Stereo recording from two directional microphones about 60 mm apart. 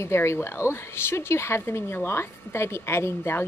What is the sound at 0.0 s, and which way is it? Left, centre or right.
A woman's voice, left.